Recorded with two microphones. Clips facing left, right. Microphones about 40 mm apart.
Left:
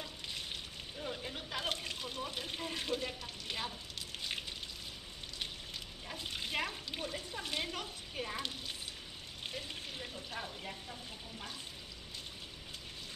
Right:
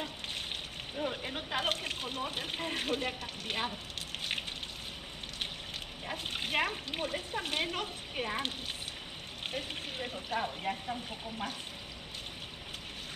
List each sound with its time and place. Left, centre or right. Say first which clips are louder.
0.0 s a sound: right 5 dB; right
4.2 s raindrop: right 4 dB; right
6.0 s speech: right 5 dB; right